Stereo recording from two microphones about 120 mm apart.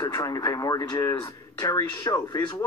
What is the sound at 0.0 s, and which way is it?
Speech, 35° left (ahead or behind).